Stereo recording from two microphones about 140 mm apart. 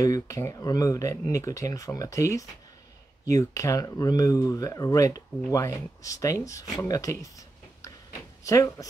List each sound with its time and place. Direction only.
0.0 s speech: 25° left (ahead or behind)